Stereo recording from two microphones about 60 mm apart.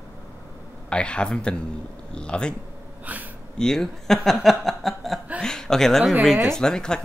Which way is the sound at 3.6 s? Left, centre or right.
Centre.